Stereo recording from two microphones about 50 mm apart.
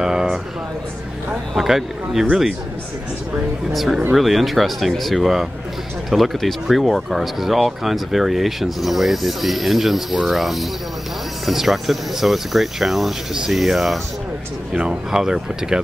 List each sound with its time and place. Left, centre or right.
0.0 s a sound: centre
1.5 s speech: centre
3.7 s speech: centre
14.7 s speech: centre